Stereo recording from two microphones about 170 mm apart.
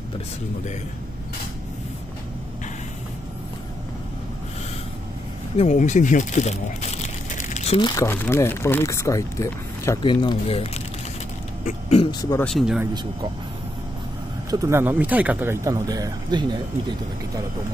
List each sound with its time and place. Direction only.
5.6 s speech: 45° left (ahead or behind)
7.8 s speech: 20° left (ahead or behind); by 10.8 s 35° left (ahead or behind)
11.9 s speech: 30° left (ahead or behind)
12.4 s speech: centre (ahead or behind)
14.5 s speech: 15° right (ahead or behind)